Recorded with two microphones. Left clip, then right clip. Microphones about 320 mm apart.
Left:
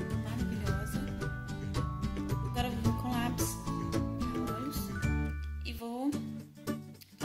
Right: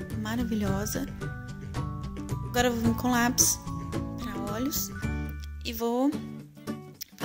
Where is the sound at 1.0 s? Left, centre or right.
Centre.